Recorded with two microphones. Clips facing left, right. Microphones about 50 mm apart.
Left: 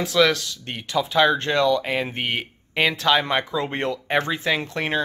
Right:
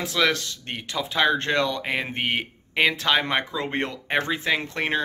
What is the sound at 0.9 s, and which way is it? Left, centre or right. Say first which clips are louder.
Speech: left 4 dB; centre.